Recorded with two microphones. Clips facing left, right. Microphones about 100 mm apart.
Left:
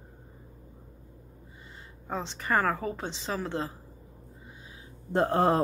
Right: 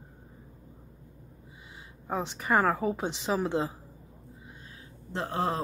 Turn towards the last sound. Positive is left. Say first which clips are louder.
# left 7 dB
turn(degrees=55)  # may be behind; listen again after turning